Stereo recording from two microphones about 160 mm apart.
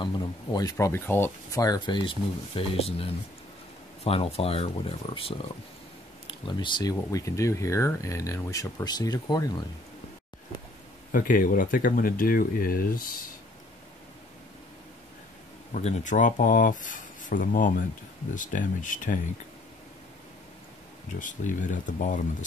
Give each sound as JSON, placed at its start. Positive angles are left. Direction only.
{"t": 0.0, "sound": "speech", "side_deg": 25}
{"t": 6.2, "sound": "speech", "side_deg": 30}
{"t": 11.1, "sound": "speech", "side_deg": 55}
{"t": 15.7, "sound": "speech", "side_deg": 50}
{"t": 21.2, "sound": "speech", "side_deg": 55}